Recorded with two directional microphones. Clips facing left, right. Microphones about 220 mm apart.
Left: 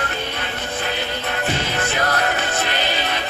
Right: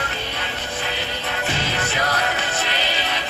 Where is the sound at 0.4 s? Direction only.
50° left (ahead or behind).